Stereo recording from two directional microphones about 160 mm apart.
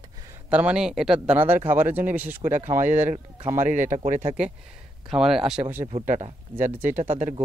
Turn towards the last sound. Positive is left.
turn(degrees=-50)  # may be behind; listen again after turning